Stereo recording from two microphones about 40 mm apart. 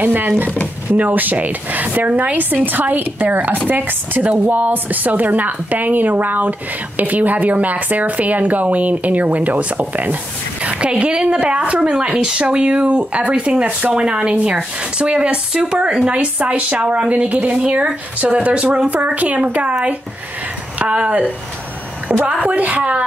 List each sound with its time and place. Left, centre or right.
0.0 s a woman's voice: right
10.6 s speech: right
12.1 s a woman's voice: right
20.8 s a woman's voice: right